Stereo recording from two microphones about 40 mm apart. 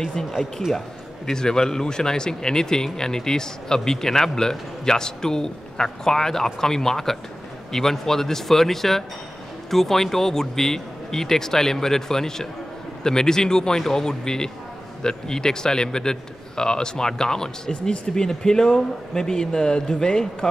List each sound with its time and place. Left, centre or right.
0.0 s a man's voice: centre
0.3 s speech: centre
0.7 s a man's voice: centre